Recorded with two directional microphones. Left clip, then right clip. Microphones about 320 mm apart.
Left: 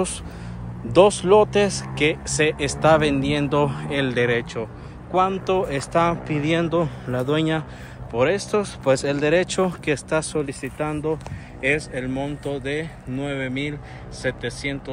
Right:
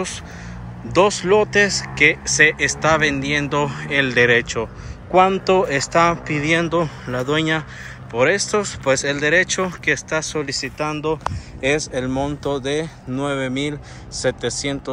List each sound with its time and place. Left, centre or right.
0.9 s speech: centre
11.9 s speech: centre